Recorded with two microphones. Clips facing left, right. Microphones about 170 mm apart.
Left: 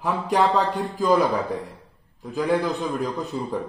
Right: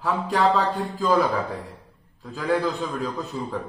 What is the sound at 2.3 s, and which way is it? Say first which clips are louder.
Speech: left 1 dB; 20° left (ahead or behind).